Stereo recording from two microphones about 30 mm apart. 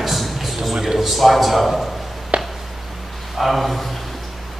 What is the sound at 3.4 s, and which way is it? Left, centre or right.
Speech, centre.